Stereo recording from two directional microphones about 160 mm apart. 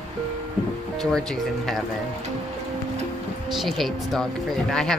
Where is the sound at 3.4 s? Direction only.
Centre (ahead or behind).